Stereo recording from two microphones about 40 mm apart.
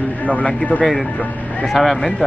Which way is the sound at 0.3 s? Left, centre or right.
Left.